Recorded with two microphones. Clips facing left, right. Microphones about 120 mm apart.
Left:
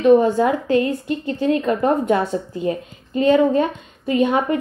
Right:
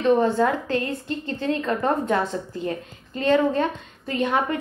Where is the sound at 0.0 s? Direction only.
15° left (ahead or behind).